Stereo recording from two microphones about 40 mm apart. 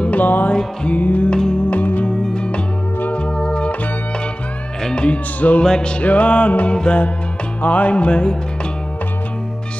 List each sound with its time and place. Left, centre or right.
0.0 s music: left
0.5 s music: left
0.9 s music: left
1.3 s music: left
1.7 s music: left
2.0 s music: left
4.8 s music: left
6.0 s music: left
6.7 s music: left
7.6 s music: left